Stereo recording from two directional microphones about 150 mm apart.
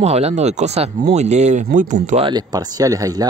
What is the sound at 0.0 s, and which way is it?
Speech, 45° right (ahead or behind).